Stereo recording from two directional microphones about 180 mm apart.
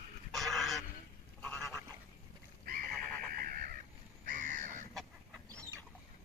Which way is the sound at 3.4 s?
50° right (ahead or behind).